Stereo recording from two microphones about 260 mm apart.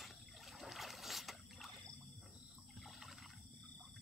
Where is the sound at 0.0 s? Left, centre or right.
Centre.